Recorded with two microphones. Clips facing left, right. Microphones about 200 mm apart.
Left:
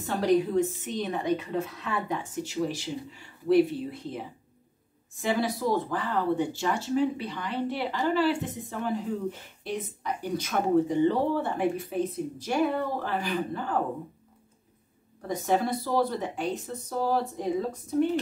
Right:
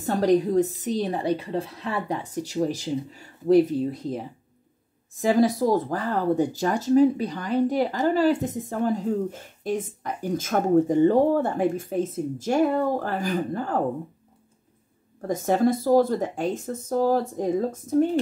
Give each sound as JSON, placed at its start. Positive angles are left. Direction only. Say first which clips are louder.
{"t": 0.0, "sound": "a woman's voice", "louder": "right 4 dB", "side_deg": -40}
{"t": 15.2, "sound": "speech", "louder": "right 5 dB", "side_deg": -45}